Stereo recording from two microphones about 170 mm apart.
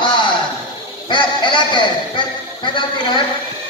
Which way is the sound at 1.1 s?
30° left (ahead or behind).